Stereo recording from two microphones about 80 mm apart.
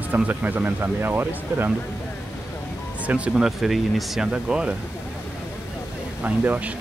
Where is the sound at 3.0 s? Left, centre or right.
Centre.